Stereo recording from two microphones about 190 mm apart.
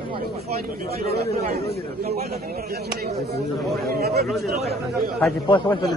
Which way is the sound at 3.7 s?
55° right (ahead or behind).